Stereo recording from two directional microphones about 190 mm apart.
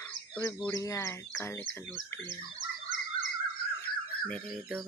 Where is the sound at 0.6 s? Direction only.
15° left (ahead or behind).